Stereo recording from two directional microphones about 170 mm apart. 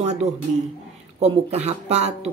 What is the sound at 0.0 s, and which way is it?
Speech, 40° right (ahead or behind).